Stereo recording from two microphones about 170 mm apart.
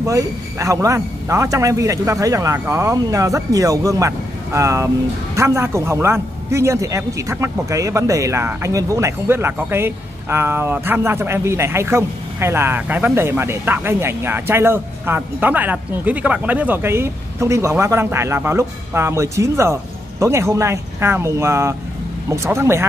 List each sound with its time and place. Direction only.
0.0 s a man's voice: 20° right (ahead or behind)